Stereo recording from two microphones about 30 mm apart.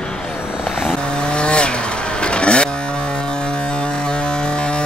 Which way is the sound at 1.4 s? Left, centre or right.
Left.